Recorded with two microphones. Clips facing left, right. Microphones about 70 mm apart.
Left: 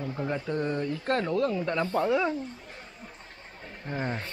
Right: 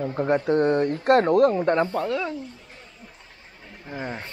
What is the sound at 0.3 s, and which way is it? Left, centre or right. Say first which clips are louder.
Speech: right 11 dB; right.